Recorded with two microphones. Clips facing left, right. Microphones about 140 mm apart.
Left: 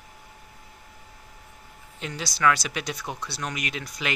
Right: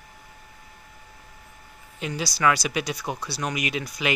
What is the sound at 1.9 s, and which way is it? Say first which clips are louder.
Speech: right 4 dB; 5° right (ahead or behind).